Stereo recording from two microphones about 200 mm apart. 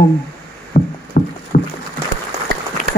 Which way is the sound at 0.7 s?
50° left (ahead or behind).